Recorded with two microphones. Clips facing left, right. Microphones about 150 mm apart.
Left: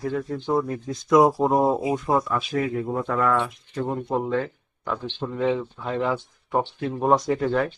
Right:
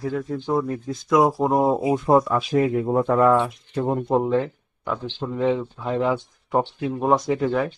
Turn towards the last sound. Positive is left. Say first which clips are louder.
# right 1 dB
turn(degrees=-5)  # may be behind; listen again after turning